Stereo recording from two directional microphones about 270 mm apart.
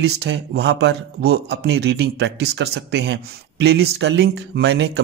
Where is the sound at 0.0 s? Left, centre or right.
Right.